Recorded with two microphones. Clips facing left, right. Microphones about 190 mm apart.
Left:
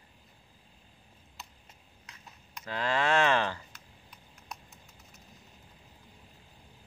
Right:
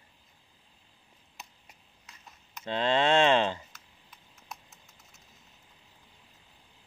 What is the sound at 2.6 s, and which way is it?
Speech, 25° right (ahead or behind).